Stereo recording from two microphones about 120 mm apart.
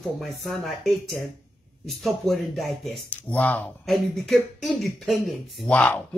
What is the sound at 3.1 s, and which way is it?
Speech, 15° left (ahead or behind).